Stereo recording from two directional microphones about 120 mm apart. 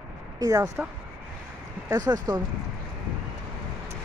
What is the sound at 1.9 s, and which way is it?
Speech, 35° right (ahead or behind).